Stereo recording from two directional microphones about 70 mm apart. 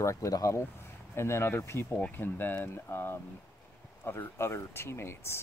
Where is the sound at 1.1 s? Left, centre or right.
Left.